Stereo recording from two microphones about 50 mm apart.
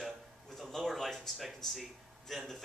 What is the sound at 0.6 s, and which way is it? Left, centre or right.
A man's voice, centre.